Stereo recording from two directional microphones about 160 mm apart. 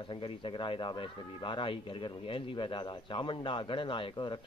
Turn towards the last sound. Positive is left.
turn(degrees=30)  # may be behind; listen again after turning